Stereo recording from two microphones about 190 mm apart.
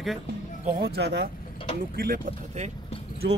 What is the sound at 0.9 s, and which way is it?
Speech, 60° right (ahead or behind).